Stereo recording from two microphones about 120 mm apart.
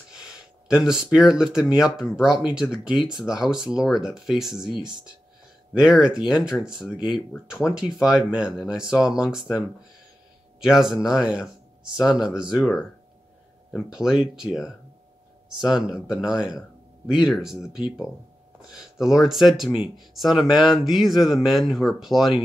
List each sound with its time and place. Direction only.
0.1 s speech: 5° right (ahead or behind)
5.8 s speech: 5° right (ahead or behind)
10.6 s speech: 5° right (ahead or behind)